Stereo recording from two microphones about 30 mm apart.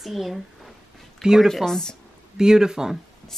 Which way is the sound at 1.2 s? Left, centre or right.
Right.